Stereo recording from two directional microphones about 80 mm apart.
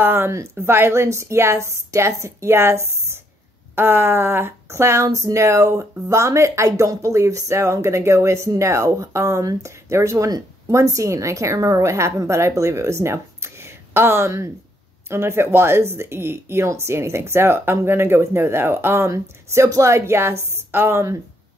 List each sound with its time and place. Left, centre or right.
0.0 s speech: right